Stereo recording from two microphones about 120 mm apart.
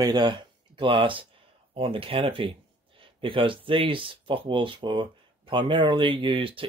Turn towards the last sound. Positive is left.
turn(degrees=-45)  # may be behind; listen again after turning